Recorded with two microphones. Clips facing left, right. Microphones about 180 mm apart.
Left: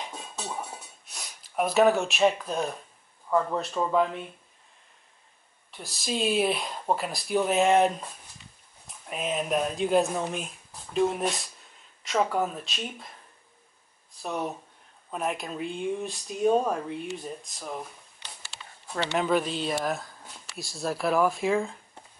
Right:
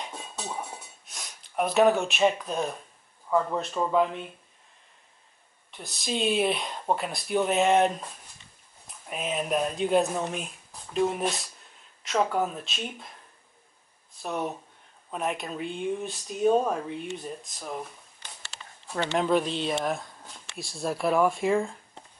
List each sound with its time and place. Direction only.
0.0 s a sound: centre (ahead or behind)
3.3 s speech: centre (ahead or behind)
5.7 s speech: centre (ahead or behind)
14.2 s speech: centre (ahead or behind)
18.9 s speech: centre (ahead or behind)